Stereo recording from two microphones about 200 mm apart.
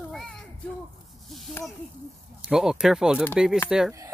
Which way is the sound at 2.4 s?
5° right (ahead or behind).